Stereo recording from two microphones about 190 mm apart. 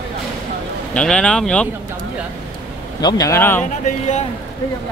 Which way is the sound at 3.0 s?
20° left (ahead or behind).